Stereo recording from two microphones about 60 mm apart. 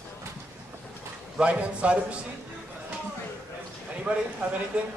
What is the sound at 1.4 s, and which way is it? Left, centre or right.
Speech, right.